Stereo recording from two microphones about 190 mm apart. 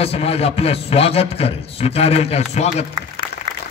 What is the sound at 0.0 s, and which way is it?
A man's voice, 30° left (ahead or behind).